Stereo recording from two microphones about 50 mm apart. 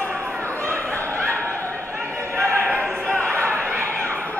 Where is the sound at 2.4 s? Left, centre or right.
Right.